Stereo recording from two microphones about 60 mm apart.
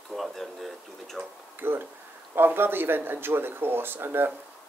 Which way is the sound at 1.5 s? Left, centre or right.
Right.